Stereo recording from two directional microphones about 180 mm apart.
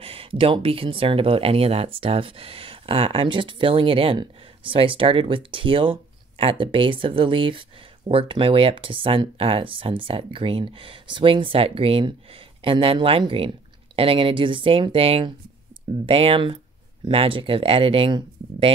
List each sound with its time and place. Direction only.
0.0 s speech: 30° right (ahead or behind)